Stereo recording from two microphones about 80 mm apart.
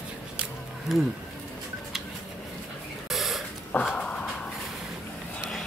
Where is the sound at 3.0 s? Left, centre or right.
Centre.